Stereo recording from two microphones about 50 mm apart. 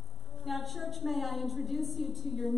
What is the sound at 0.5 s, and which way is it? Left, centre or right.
A woman's voice, centre.